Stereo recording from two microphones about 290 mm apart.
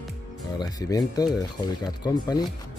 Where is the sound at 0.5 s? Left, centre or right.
Centre.